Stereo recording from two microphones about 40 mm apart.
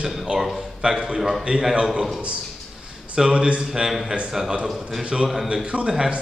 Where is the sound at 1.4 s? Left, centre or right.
Centre.